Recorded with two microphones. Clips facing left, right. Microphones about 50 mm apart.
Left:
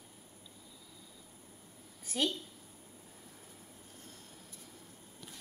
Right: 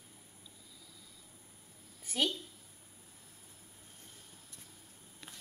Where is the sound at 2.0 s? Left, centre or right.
Centre.